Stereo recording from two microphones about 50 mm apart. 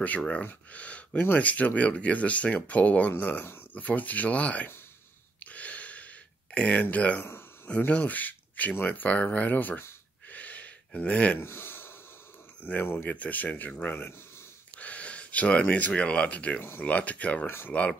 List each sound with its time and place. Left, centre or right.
0.3 s speech: left
5.4 s a sound: left
6.5 s speech: left
10.3 s gasp: left
11.4 s a sound: left
12.8 s speech: left
13.1 s speech: left
14.8 s speech: left
17.5 s speech: left